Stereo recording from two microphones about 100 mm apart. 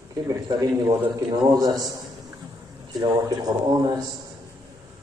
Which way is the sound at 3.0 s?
40° right (ahead or behind).